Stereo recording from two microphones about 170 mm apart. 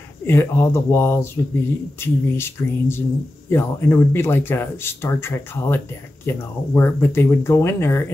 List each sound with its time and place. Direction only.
0.3 s speech: 15° left (ahead or behind)